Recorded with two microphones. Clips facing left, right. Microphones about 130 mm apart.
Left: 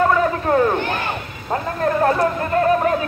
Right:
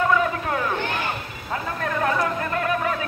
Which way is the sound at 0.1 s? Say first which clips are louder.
Left 5 dB; 40° left (ahead or behind).